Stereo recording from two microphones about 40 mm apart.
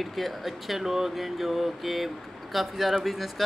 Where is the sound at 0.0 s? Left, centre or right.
Centre.